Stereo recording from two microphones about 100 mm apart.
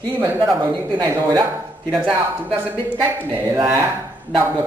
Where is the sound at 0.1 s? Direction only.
20° right (ahead or behind).